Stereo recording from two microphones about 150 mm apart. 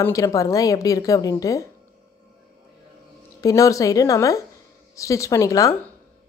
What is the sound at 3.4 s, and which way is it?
A woman's voice, 20° left (ahead or behind).